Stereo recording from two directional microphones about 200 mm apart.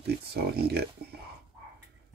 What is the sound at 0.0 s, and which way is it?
Speech, 55° right (ahead or behind).